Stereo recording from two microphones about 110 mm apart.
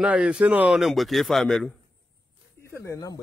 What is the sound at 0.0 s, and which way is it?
Speech, 10° right (ahead or behind).